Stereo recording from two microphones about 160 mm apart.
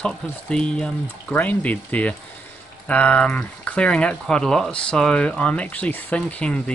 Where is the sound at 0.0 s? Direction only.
5° left (ahead or behind).